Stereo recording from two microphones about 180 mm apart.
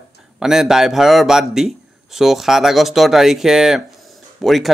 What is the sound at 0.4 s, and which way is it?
Speech, 5° right (ahead or behind).